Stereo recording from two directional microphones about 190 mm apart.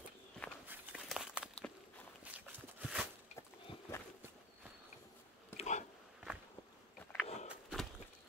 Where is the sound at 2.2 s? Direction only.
5° right (ahead or behind).